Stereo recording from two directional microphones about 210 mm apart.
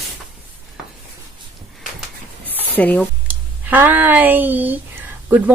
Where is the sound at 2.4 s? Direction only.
10° left (ahead or behind).